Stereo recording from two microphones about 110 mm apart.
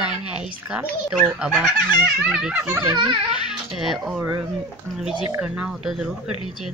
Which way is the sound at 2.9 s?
45° right (ahead or behind).